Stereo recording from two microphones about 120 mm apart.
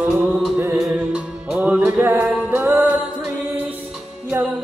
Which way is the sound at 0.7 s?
5° right (ahead or behind).